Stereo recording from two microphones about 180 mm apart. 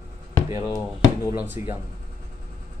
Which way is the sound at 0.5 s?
20° left (ahead or behind).